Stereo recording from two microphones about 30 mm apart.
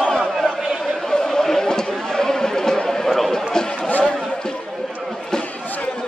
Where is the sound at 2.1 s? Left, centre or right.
Centre.